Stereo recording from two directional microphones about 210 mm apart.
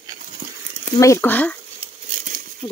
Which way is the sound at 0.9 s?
15° left (ahead or behind).